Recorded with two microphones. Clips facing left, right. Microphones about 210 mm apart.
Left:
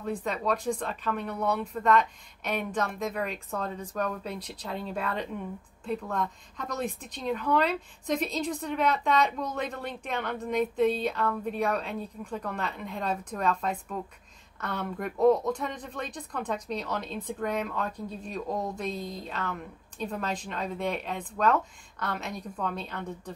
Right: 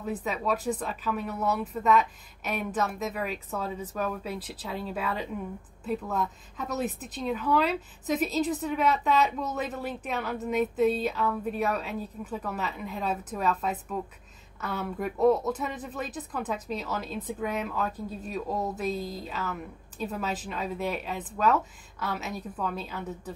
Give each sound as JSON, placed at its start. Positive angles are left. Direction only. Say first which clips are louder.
{"t": 0.0, "sound": "speech", "louder": "even", "side_deg": -5}